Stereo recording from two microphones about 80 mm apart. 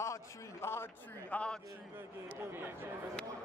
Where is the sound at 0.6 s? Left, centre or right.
Left.